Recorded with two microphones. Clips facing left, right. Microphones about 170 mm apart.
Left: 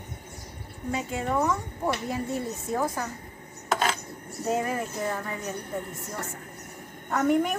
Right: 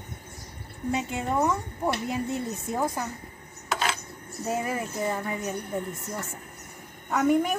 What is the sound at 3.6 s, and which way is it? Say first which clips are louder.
Coin: left 2 dB; 45° left (ahead or behind).